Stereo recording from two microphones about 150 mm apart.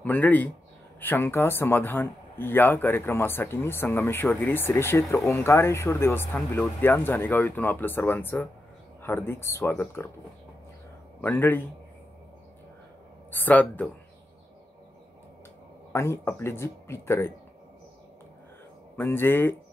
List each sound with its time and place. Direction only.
0.0 s speech: 10° left (ahead or behind)
11.1 s a man's voice: 15° left (ahead or behind)
13.3 s speech: 10° left (ahead or behind)
15.9 s speech: 20° left (ahead or behind)
18.9 s speech: 15° left (ahead or behind)